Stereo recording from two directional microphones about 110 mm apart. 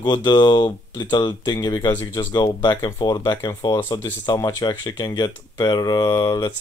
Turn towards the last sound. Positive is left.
turn(degrees=40)  # may be behind; listen again after turning